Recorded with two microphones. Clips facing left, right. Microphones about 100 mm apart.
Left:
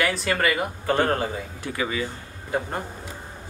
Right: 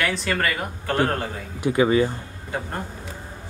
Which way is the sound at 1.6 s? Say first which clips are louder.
Right 10 dB; 20° right (ahead or behind).